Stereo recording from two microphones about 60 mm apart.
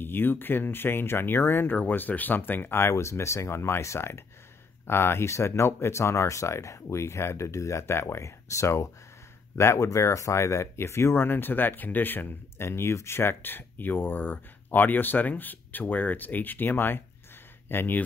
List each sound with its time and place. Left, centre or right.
0.0 s speech: left
2.8 s speech: left
4.8 s speech: left
11.2 s speech: left